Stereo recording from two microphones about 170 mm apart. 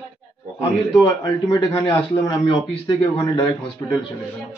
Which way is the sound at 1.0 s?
20° left (ahead or behind).